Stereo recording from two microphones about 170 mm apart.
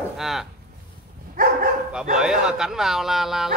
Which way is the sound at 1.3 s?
60° right (ahead or behind).